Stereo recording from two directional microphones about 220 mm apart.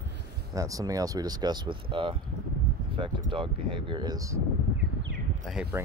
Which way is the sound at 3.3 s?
20° right (ahead or behind).